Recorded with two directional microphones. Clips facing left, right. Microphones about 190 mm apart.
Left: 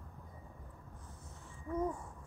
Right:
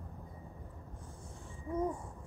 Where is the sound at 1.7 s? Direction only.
20° right (ahead or behind).